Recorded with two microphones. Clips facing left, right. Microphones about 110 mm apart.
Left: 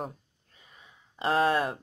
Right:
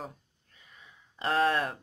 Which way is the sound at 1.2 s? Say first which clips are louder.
Left 2 dB; 10° left (ahead or behind).